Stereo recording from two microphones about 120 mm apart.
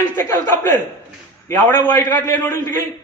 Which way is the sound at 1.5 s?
20° left (ahead or behind).